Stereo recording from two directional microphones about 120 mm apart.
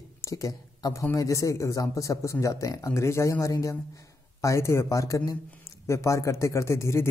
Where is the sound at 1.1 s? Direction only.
30° left (ahead or behind).